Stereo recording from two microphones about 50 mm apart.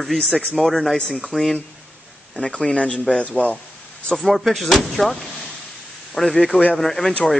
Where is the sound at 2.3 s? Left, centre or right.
Centre.